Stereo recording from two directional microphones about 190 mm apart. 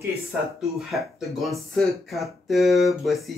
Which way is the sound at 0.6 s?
Centre (ahead or behind).